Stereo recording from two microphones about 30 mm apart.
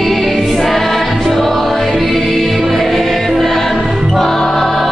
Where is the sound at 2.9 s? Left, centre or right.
Centre.